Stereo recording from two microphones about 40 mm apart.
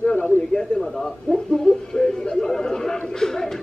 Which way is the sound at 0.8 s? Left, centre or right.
Centre.